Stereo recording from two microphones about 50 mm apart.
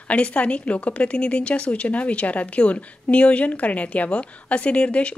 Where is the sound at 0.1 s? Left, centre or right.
Left.